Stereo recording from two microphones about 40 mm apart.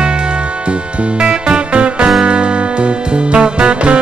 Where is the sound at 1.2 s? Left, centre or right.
Right.